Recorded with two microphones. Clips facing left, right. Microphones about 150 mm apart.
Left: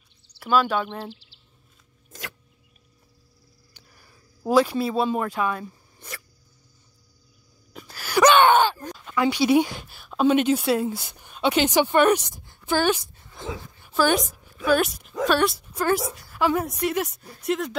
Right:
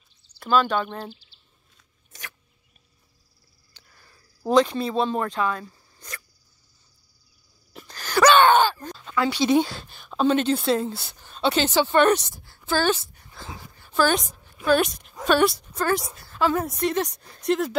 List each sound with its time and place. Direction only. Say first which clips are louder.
0.4 s speech: even; 5° left (ahead or behind)
3.7 s a sound: even; 15° left (ahead or behind)
4.5 s speech: even; 5° left (ahead or behind)
7.8 s a sound: even; 10° left (ahead or behind)
8.2 s speech: even; 15° left (ahead or behind)
13.1 s dog: left 6 dB; 20° left (ahead or behind)
13.9 s a woman's voice: left 1 dB; 5° left (ahead or behind)
15.7 s a woman's voice: left 1 dB; 15° left (ahead or behind)